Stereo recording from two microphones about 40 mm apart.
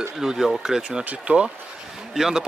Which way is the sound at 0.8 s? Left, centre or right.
Right.